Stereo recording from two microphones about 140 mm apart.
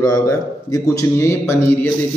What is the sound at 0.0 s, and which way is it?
A man's voice, 25° left (ahead or behind).